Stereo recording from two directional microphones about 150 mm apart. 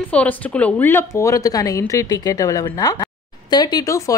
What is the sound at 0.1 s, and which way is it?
A woman's voice, 10° left (ahead or behind).